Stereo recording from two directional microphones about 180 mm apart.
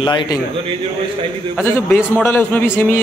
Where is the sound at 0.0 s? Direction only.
25° left (ahead or behind).